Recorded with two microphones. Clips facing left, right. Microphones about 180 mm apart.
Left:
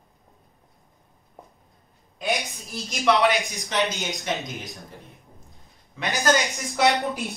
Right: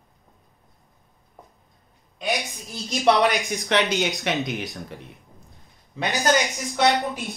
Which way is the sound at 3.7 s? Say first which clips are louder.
Right 5 dB; 70° right (ahead or behind).